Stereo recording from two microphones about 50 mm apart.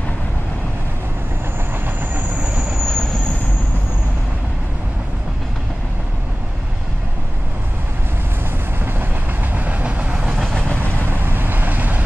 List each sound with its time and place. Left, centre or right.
2.4 s train: centre
2.8 s vehicle: centre
9.7 s train: right
10.8 s vehicle: right